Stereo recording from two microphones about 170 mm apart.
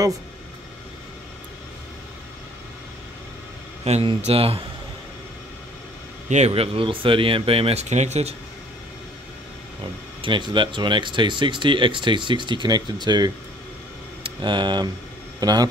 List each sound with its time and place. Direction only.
3.8 s speech: 35° right (ahead or behind)
6.2 s speech: 40° right (ahead or behind)
10.2 s speech: 30° right (ahead or behind)